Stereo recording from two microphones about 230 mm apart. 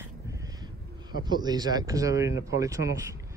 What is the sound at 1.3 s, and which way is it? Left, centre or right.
Speech, centre.